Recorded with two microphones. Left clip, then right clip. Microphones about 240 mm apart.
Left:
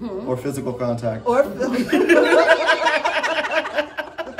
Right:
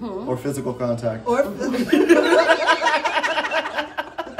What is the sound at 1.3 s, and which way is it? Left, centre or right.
Speech, centre.